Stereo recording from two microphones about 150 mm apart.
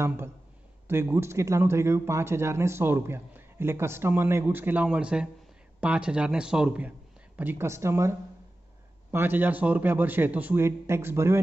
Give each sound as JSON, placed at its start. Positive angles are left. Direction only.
{"t": 0.8, "sound": "speech", "side_deg": -15}